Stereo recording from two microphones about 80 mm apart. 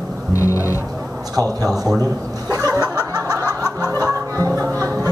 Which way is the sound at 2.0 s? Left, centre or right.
Right.